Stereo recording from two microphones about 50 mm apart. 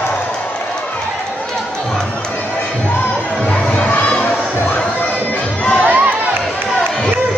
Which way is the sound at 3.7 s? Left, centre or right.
Left.